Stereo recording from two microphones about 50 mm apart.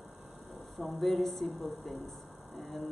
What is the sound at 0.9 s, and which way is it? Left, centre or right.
Speech, centre.